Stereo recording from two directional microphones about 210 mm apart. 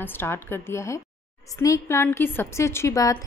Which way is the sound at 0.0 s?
10° left (ahead or behind).